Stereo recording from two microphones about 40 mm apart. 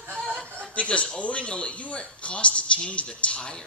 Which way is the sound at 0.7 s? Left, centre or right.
Left.